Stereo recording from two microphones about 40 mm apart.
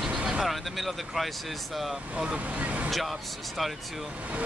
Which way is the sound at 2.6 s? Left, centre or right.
Right.